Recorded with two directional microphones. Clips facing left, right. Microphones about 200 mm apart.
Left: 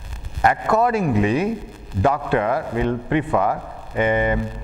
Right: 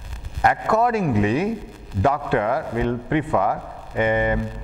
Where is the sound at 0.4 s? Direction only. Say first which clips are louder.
Left 1 dB; 20° left (ahead or behind).